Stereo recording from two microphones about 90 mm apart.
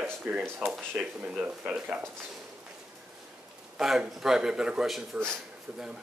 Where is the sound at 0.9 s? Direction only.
15° right (ahead or behind).